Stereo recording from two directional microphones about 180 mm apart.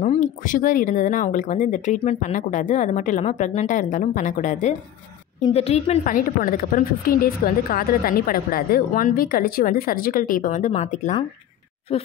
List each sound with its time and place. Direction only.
0.0 s a woman's voice: 40° left (ahead or behind)